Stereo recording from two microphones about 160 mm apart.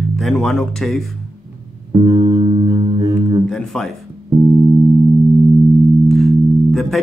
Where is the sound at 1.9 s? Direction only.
35° right (ahead or behind).